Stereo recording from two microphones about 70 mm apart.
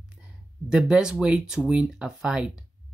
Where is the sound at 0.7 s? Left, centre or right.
Centre.